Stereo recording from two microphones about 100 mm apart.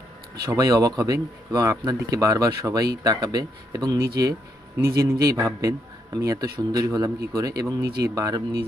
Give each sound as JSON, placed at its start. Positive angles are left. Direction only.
{"t": 0.5, "sound": "speech", "side_deg": -35}